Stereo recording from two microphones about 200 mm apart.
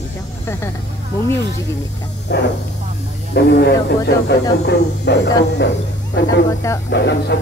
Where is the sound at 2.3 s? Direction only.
55° left (ahead or behind).